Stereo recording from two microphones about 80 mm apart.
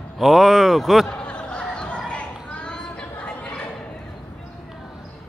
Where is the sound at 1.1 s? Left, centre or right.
Centre.